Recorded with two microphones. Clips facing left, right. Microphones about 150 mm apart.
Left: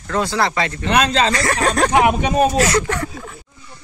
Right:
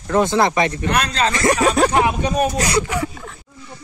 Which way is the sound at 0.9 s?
90° left.